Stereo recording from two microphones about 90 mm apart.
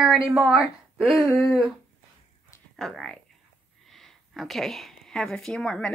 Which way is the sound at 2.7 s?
5° left (ahead or behind).